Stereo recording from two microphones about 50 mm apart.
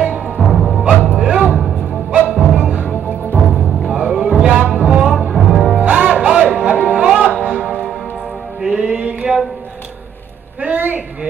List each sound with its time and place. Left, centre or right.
0.4 s music: centre
0.8 s music: right
3.9 s music: centre
4.8 s music: centre
5.3 s music: centre
5.8 s music: right
10.6 s a sound: right